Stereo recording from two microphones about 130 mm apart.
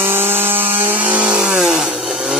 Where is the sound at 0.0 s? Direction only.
15° right (ahead or behind).